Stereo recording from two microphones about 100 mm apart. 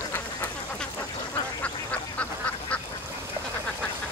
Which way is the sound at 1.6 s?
15° left (ahead or behind).